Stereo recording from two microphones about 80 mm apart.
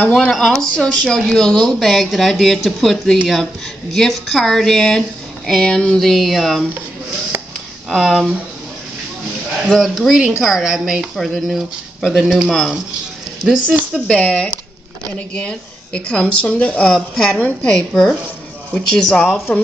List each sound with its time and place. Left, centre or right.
0.0 s speech: centre
0.3 s speech: centre
7.9 s speech: centre
9.7 s speech: centre
13.5 s speech: centre
13.9 s speech: centre
16.9 s speech: centre